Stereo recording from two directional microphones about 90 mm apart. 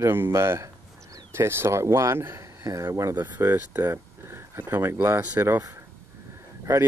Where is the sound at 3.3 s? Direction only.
25° right (ahead or behind).